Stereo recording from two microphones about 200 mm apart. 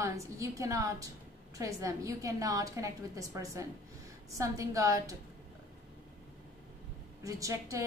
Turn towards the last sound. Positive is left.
turn(degrees=-15)  # may be behind; listen again after turning